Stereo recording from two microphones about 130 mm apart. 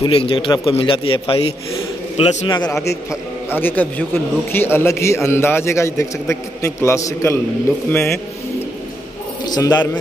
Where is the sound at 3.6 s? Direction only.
15° left (ahead or behind).